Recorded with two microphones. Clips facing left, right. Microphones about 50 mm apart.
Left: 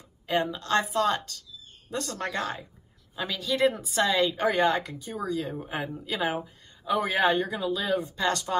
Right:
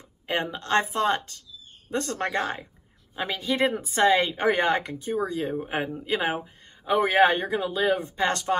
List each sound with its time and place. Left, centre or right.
0.3 s a woman's voice: right